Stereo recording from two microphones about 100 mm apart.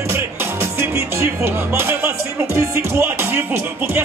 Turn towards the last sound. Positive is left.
turn(degrees=-20)  # may be behind; listen again after turning